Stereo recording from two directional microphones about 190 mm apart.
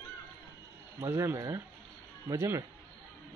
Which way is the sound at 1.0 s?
15° right (ahead or behind).